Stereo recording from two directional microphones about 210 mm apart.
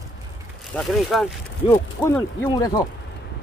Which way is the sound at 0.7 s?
Centre (ahead or behind).